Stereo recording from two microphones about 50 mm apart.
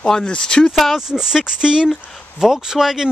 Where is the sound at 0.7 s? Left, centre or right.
Centre.